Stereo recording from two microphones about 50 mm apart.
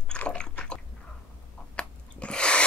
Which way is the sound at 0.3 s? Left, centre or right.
Centre.